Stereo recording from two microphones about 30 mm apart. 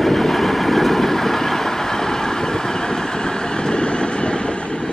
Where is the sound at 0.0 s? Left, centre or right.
Centre; by 4.8 s left.